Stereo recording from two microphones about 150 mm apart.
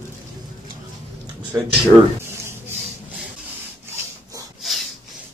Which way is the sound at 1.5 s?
15° right (ahead or behind).